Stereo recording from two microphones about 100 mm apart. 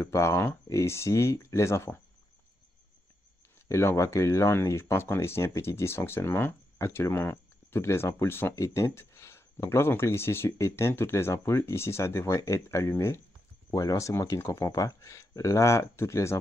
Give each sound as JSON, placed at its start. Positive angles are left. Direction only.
{"t": 0.0, "sound": "speech", "side_deg": 30}
{"t": 3.5, "sound": "speech", "side_deg": 25}